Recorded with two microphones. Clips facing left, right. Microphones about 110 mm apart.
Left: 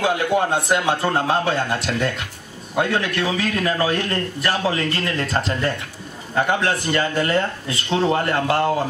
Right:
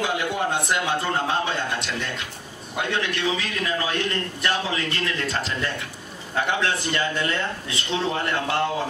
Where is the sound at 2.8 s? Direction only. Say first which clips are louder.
Left 5 dB; 45° left (ahead or behind).